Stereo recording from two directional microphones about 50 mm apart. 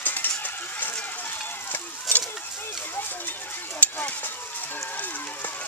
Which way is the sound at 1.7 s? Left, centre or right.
Left.